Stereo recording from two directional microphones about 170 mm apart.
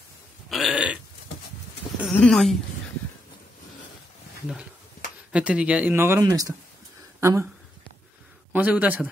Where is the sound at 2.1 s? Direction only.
5° left (ahead or behind).